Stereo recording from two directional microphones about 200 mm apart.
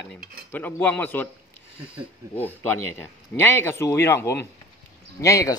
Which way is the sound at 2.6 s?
10° left (ahead or behind).